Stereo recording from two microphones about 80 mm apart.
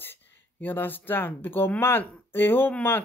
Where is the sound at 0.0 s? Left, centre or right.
Left.